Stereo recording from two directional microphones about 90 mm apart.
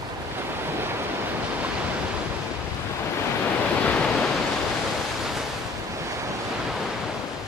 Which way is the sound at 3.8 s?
15° left (ahead or behind).